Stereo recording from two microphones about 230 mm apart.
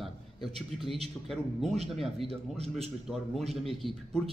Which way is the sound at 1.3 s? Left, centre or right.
Centre.